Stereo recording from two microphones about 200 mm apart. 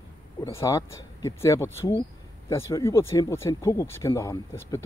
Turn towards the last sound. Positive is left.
turn(degrees=15)  # may be behind; listen again after turning